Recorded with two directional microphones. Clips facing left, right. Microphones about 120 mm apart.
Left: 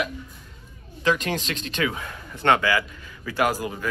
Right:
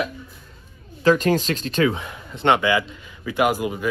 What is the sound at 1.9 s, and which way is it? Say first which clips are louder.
A man's voice: right 2 dB; 20° right (ahead or behind).